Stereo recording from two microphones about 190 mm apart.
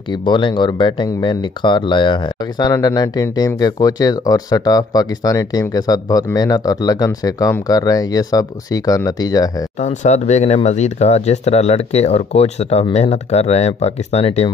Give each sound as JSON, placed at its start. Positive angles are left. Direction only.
{"t": 0.1, "sound": "speech", "side_deg": 25}
{"t": 9.8, "sound": "speech", "side_deg": 40}